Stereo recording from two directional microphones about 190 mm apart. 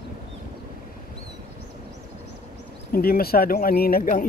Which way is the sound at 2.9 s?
50° left (ahead or behind).